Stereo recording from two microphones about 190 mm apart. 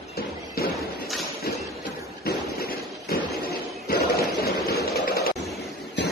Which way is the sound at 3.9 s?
55° left (ahead or behind).